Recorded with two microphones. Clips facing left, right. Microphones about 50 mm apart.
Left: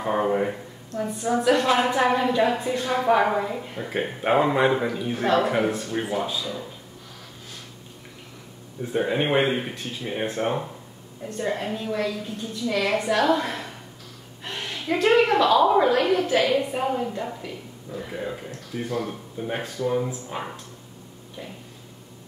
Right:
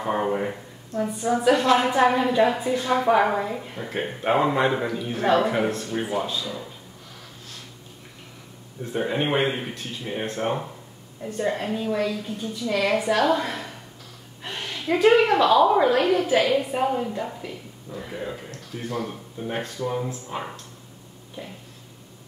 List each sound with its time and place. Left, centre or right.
0.0 s a woman's voice: centre
8.8 s a woman's voice: centre
18.5 s a sound: centre
18.9 s a woman's voice: centre